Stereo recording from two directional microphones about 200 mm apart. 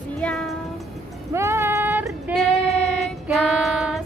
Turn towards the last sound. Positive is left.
turn(degrees=0)  # may be behind; listen again after turning